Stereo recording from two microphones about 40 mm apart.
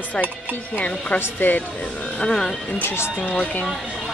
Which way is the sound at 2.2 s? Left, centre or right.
Centre.